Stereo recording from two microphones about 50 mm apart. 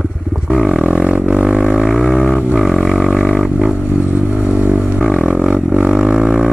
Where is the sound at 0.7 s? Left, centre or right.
Right.